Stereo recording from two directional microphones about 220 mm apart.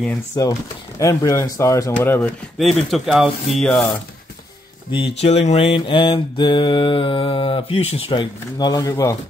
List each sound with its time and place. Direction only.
0.0 s speech: 10° left (ahead or behind)
4.9 s mantra: 25° left (ahead or behind)